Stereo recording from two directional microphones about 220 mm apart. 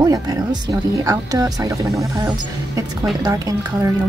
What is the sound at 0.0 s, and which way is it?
Speech, 15° right (ahead or behind).